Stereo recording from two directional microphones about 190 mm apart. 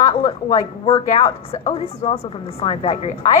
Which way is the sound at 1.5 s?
30° left (ahead or behind).